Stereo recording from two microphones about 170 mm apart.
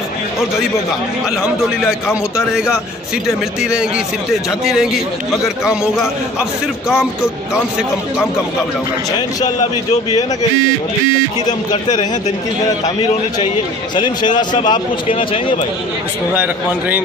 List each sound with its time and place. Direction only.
2.3 s a man's voice: 5° right (ahead or behind)
11.4 s speech: 25° left (ahead or behind)
13.9 s speech: 25° left (ahead or behind)